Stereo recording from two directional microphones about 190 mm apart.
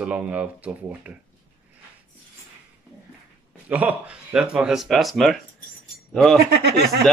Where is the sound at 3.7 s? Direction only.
5° right (ahead or behind).